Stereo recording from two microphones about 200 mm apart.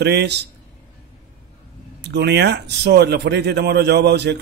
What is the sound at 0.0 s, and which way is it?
Speech, 55° right (ahead or behind).